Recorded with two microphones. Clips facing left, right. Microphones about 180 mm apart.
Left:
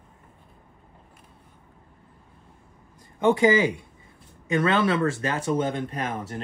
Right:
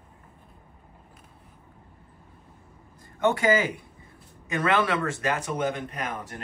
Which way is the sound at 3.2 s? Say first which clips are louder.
Left 3 dB; 25° left (ahead or behind).